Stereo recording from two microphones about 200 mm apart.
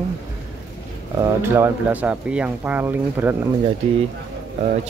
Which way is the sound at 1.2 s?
15° right (ahead or behind).